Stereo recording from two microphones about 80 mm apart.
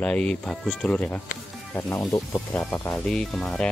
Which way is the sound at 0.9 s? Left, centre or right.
Left.